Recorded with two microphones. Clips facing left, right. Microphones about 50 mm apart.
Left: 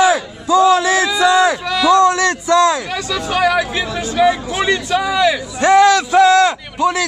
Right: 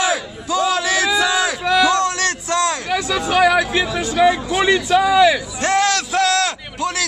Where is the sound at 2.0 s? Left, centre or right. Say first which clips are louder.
Left 7 dB; centre.